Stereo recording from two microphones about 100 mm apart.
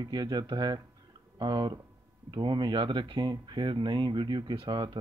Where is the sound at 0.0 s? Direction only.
45° right (ahead or behind).